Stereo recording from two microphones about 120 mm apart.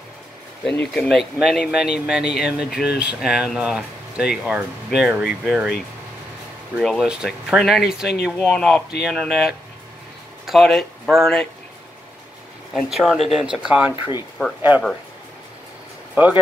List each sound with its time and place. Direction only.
0.7 s speech: 10° left (ahead or behind)
6.8 s speech: 5° left (ahead or behind)
8.5 s speech: 5° left (ahead or behind)
12.7 s speech: centre (ahead or behind)
14.4 s speech: 25° left (ahead or behind)